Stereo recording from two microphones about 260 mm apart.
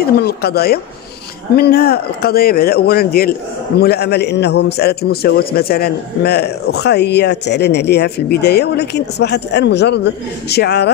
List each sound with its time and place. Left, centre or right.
0.2 s a man's voice: left